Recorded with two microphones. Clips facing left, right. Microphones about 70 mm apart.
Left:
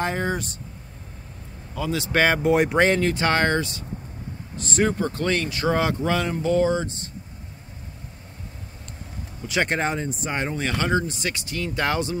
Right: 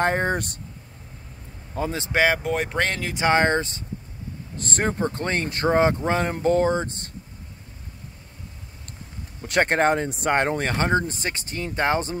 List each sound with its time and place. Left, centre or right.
0.0 s speech: right
1.8 s speech: right
2.1 s speech: centre
3.1 s speech: centre
4.6 s speech: right
9.4 s speech: right